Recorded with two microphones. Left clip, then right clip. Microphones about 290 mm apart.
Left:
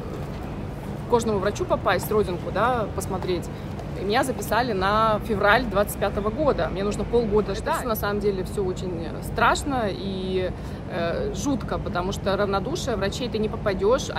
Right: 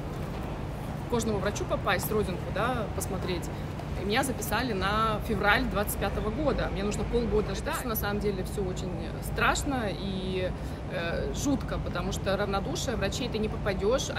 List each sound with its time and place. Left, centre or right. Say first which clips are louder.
1.1 s speech: left 8 dB; centre
4.1 s speech: left 6 dB; centre
9.4 s speech: left 6 dB; centre